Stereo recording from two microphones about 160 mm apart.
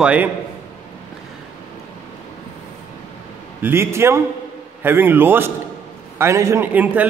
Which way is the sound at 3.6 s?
15° right (ahead or behind).